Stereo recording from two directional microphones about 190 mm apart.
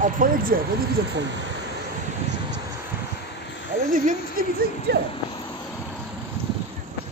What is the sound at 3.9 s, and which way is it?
A woman's voice, 45° right (ahead or behind).